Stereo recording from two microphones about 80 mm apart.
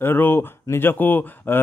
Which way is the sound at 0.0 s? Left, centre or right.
Left.